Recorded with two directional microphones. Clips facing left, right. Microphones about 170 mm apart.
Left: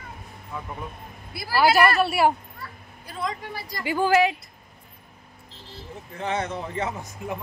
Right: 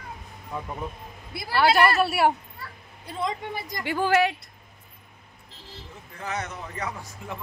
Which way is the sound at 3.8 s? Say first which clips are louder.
Left 2 dB; centre (ahead or behind).